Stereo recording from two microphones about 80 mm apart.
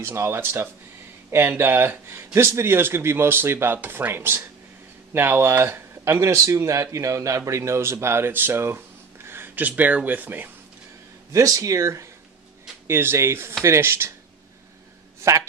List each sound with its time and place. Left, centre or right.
0.0 s speech: right
11.3 s speech: right
15.1 s a sound: right